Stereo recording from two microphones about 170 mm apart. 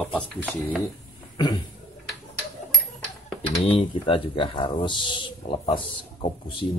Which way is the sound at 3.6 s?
35° left (ahead or behind).